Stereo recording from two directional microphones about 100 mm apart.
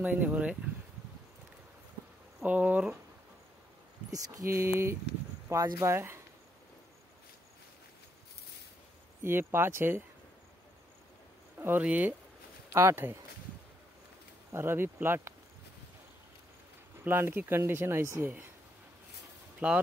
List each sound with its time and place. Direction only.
0.0 s speech: 15° right (ahead or behind)
2.4 s speech: 15° right (ahead or behind)
4.1 s speech: 30° right (ahead or behind)
9.2 s speech: 25° right (ahead or behind)
11.6 s speech: 15° right (ahead or behind)
12.7 s speech: 25° right (ahead or behind)
14.5 s speech: 25° right (ahead or behind)
17.0 s speech: 20° right (ahead or behind)
19.6 s speech: 15° right (ahead or behind)